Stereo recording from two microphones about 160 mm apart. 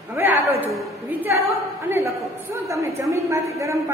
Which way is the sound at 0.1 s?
10° right (ahead or behind).